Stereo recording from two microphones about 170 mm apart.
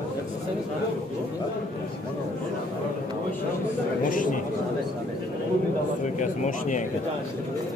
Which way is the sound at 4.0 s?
50° left (ahead or behind).